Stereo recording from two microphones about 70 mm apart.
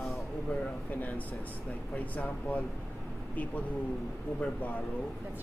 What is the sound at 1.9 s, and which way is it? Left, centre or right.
Speech, left.